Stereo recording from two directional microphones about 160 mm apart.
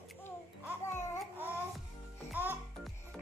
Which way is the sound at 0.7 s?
15° left (ahead or behind).